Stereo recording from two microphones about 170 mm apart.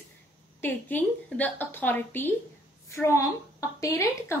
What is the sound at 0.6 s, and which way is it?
A woman's voice, 10° left (ahead or behind).